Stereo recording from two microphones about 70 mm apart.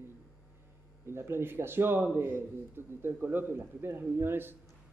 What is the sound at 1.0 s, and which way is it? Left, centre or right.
A man's voice, right.